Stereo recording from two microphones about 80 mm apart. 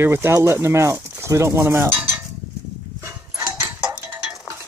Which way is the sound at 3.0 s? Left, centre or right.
Right.